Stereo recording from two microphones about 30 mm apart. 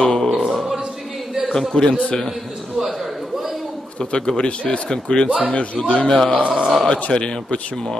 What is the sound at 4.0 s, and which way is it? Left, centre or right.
Speech, left.